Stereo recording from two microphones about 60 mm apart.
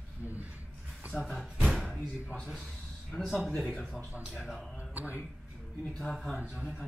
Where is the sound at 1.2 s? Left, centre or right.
Centre.